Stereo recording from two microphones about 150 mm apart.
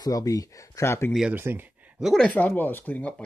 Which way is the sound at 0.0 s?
25° left (ahead or behind).